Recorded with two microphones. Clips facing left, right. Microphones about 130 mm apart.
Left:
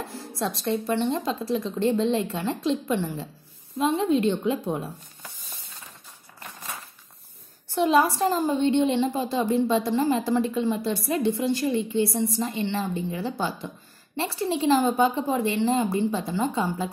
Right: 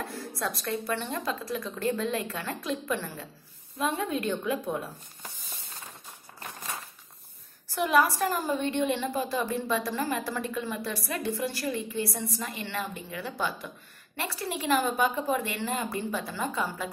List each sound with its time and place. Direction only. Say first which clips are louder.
0.4 s a woman's voice: left 6 dB; 25° left (ahead or behind)
7.7 s a woman's voice: left 4 dB; 25° left (ahead or behind)